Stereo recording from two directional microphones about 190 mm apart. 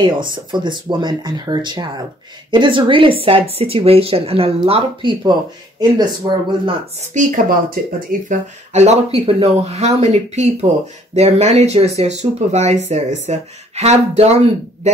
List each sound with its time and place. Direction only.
0.0 s speech: 25° right (ahead or behind)
7.0 s speech: 45° right (ahead or behind)